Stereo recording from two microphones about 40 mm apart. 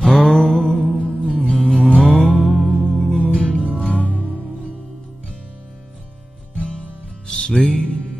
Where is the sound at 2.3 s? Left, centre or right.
Centre.